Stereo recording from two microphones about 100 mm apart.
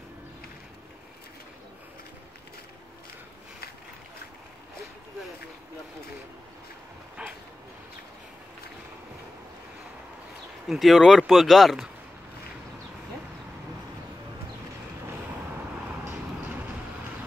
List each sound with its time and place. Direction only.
10.7 s speech: centre (ahead or behind)
16.1 s vehicle: 25° right (ahead or behind)